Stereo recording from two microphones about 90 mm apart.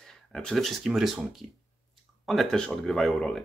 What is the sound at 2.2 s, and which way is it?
Speech, 5° left (ahead or behind).